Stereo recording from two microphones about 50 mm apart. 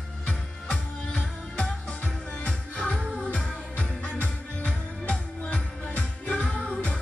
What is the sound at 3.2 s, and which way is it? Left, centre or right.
Music, left.